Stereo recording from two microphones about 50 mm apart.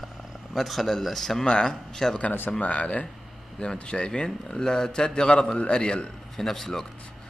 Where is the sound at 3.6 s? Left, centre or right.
Centre.